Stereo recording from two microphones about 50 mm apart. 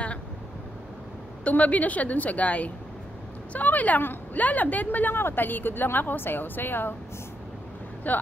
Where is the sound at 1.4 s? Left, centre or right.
Left.